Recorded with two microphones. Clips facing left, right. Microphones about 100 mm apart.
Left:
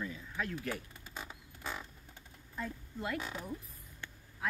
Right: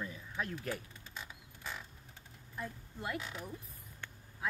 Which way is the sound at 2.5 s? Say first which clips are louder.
Left 3 dB; 15° right (ahead or behind).